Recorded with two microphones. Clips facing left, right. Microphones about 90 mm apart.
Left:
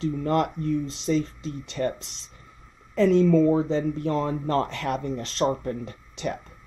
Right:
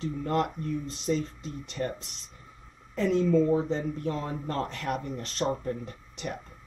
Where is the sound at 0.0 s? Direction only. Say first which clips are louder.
Left 4 dB; 90° left.